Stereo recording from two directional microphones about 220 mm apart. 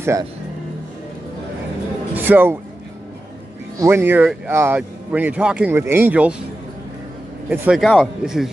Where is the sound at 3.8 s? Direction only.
10° right (ahead or behind).